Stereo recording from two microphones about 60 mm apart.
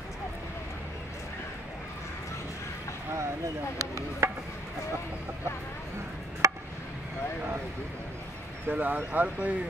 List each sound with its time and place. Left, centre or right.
3.7 s speech: right
6.4 s chop: right
8.6 s speech: right